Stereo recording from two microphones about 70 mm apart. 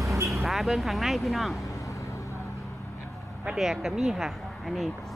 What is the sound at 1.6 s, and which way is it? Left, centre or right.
Vehicle, left.